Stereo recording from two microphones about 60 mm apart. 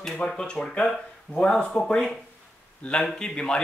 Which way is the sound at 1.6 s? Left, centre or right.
Centre.